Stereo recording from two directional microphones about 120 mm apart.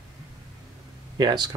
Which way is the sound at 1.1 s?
35° right (ahead or behind).